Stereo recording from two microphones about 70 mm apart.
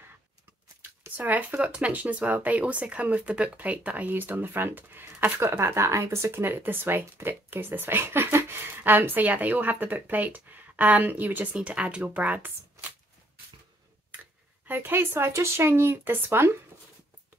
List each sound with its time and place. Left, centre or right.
0.8 s speech: right
14.7 s speech: right